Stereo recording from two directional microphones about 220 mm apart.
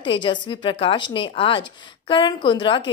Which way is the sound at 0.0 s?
20° left (ahead or behind).